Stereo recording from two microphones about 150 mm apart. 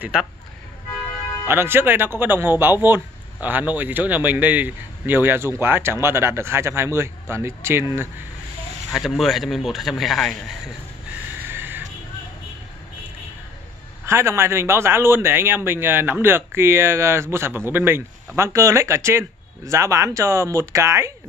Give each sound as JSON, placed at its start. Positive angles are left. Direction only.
{"t": 0.0, "sound": "speech", "side_deg": -5}
{"t": 1.5, "sound": "speech", "side_deg": -15}
{"t": 8.9, "sound": "speech", "side_deg": 0}
{"t": 11.4, "sound": "a sound", "side_deg": -15}
{"t": 14.0, "sound": "speech", "side_deg": -20}